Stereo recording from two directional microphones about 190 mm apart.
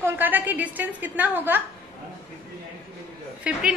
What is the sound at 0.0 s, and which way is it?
A woman's voice, 10° right (ahead or behind).